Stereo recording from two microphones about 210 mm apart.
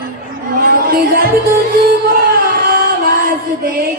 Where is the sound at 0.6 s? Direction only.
45° right (ahead or behind).